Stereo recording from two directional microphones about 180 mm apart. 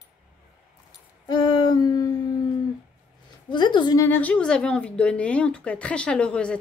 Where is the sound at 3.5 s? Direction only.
25° left (ahead or behind).